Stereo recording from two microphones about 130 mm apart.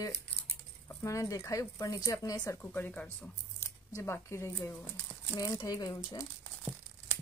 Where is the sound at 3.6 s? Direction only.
20° left (ahead or behind).